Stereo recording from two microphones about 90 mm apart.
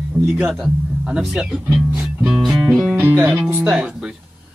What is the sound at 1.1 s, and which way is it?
Speech, 5° right (ahead or behind).